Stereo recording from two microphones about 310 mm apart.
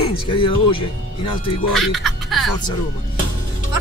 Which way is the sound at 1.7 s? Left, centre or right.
Centre.